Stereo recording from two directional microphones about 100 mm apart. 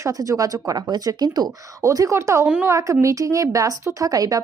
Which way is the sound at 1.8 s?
30° right (ahead or behind).